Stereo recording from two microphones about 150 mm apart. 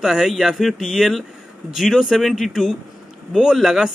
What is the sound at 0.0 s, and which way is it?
Speech, 5° right (ahead or behind).